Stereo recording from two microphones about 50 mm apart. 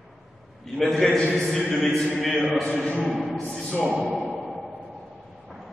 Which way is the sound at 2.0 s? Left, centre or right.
Centre.